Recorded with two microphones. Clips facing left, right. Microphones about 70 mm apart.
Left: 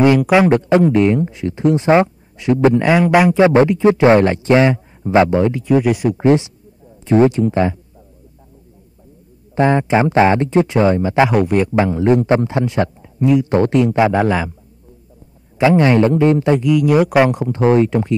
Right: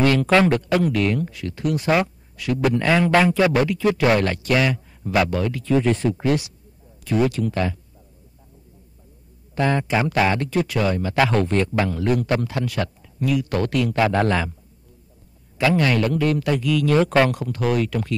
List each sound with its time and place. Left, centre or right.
0.0 s speech: centre
6.1 s speech: left
9.6 s speech: left
15.5 s speech: left